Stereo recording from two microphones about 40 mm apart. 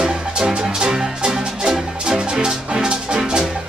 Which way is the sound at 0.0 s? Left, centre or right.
Right.